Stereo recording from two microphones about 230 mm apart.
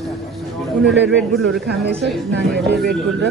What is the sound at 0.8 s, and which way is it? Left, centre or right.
Speech, centre.